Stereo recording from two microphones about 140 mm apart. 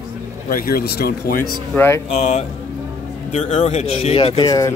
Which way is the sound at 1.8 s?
20° left (ahead or behind).